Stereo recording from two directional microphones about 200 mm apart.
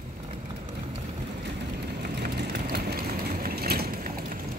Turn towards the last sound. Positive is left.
turn(degrees=-50)  # may be behind; listen again after turning